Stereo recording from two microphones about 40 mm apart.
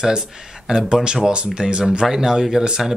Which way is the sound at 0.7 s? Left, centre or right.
Right.